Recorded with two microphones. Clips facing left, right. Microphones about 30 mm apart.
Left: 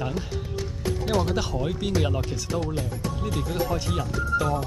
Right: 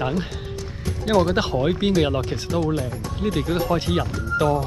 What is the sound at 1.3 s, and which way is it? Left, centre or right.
Speech, right.